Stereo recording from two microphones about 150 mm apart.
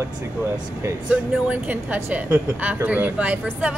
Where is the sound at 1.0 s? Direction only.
10° right (ahead or behind).